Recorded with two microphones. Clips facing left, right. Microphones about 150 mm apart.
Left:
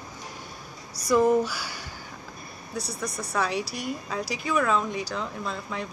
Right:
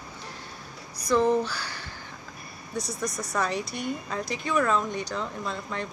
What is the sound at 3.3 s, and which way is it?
Speech, centre (ahead or behind).